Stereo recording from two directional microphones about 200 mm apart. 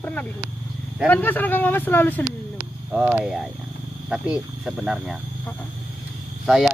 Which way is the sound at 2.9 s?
5° right (ahead or behind).